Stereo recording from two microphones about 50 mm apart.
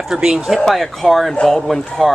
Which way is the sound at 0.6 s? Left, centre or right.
Centre.